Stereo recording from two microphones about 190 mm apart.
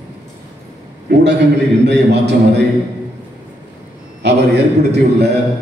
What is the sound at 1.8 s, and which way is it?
Speech, 65° right (ahead or behind).